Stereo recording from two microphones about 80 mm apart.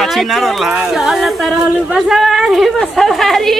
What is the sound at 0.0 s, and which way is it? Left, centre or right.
A woman's voice, centre.